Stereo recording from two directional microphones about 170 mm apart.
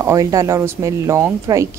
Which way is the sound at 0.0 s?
20° right (ahead or behind).